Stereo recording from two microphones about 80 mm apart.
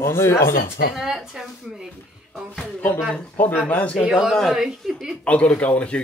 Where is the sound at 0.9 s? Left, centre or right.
Centre.